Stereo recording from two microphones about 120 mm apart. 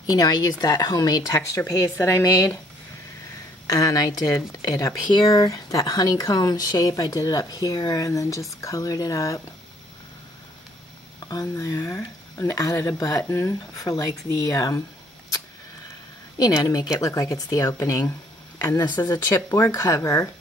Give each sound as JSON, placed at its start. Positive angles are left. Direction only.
{"t": 0.0, "sound": "speech", "side_deg": 35}
{"t": 3.6, "sound": "speech", "side_deg": 30}
{"t": 11.2, "sound": "speech", "side_deg": 25}
{"t": 16.3, "sound": "speech", "side_deg": 30}